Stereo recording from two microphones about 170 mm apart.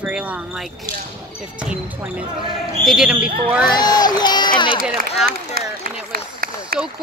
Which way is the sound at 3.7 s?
25° left (ahead or behind).